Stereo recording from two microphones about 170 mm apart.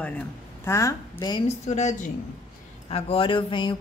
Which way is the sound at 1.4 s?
40° left (ahead or behind).